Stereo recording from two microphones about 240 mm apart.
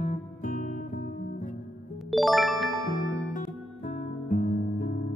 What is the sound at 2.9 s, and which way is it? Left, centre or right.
Music, left.